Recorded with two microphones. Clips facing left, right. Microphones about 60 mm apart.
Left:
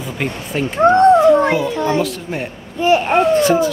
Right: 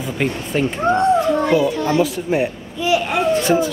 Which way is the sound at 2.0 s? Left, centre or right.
Centre.